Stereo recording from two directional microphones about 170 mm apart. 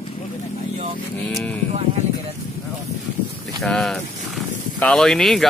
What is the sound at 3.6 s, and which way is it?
Speech, 5° left (ahead or behind).